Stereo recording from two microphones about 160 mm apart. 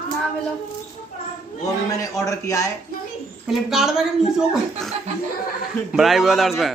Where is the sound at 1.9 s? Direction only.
20° left (ahead or behind).